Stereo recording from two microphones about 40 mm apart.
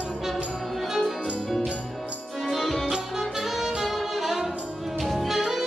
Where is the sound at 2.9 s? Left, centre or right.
Centre.